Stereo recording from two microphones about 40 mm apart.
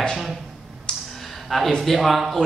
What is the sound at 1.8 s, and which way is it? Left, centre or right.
Speech, centre.